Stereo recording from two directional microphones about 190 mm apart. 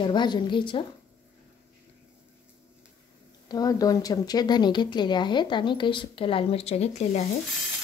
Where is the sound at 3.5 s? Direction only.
20° left (ahead or behind); by 7.2 s 35° left (ahead or behind).